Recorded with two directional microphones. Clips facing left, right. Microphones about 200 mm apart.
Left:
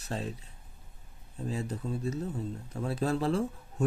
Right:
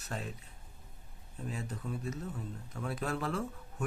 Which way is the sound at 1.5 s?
30° left (ahead or behind).